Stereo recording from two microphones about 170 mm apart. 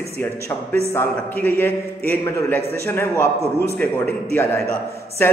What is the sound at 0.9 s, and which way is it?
A man's voice, 10° left (ahead or behind).